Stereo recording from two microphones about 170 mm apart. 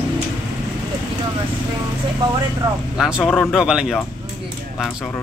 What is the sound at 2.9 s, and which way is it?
Speech, 5° right (ahead or behind).